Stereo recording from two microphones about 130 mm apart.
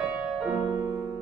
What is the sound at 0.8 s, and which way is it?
Music, 15° right (ahead or behind).